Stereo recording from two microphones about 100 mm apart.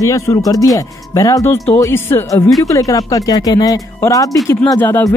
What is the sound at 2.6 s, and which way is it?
Speech, 35° left (ahead or behind).